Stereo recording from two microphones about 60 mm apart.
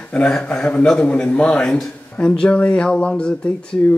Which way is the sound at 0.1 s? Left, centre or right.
Centre.